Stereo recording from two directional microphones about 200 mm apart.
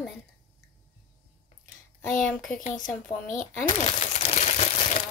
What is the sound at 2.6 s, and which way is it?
Speech, 40° left (ahead or behind).